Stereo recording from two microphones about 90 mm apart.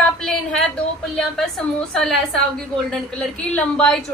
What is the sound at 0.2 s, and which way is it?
Speech, 5° left (ahead or behind).